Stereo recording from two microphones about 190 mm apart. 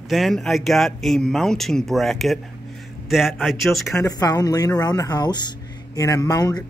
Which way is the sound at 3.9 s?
15° left (ahead or behind).